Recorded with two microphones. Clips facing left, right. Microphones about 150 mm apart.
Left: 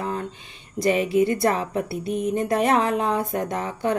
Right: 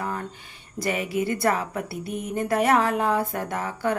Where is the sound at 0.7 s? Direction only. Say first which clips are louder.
Left 6 dB; 25° left (ahead or behind).